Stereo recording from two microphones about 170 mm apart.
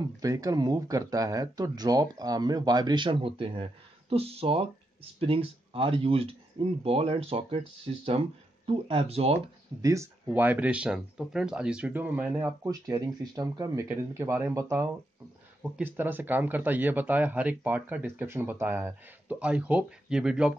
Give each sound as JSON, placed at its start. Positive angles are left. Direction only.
{"t": 0.2, "sound": "speech", "side_deg": -20}
{"t": 9.8, "sound": "speech", "side_deg": -20}